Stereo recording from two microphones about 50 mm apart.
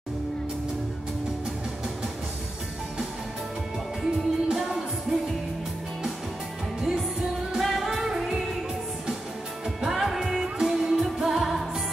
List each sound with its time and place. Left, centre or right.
4.0 s music: centre
6.8 s music: centre
7.5 s singing: centre
9.8 s music: centre